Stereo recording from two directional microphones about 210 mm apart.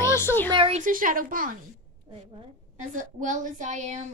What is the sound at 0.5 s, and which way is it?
A woman's voice, 25° right (ahead or behind).